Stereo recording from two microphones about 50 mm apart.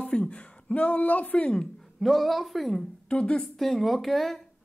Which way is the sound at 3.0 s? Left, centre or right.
Left.